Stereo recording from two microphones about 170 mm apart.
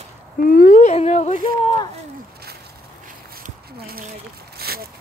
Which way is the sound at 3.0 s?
55° right (ahead or behind).